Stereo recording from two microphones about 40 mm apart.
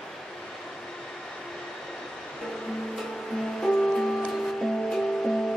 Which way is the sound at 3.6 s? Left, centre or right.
Centre.